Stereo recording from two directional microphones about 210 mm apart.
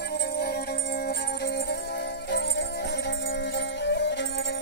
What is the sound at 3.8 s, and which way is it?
Music, 55° left (ahead or behind).